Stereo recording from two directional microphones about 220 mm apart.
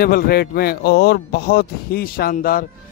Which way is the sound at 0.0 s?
45° left (ahead or behind).